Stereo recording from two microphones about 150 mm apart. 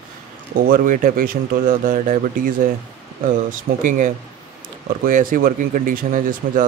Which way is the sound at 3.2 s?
60° right (ahead or behind).